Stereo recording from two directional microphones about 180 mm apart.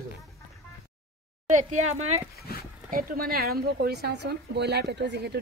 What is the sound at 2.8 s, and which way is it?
A woman's voice, 55° right (ahead or behind).